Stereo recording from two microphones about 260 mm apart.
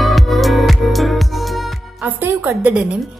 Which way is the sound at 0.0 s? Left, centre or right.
Centre.